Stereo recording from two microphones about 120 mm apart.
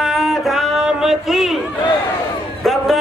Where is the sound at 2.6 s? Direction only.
Centre (ahead or behind).